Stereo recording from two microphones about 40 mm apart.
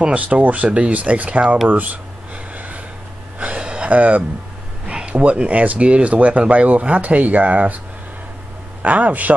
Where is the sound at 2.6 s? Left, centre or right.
Right.